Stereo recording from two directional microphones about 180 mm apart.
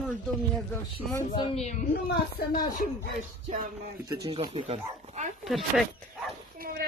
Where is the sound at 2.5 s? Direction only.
50° left (ahead or behind).